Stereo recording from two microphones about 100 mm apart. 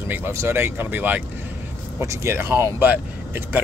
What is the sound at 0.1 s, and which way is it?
Speech, 25° right (ahead or behind).